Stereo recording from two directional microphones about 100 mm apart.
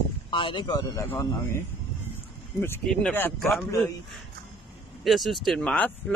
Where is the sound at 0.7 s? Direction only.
40° left (ahead or behind).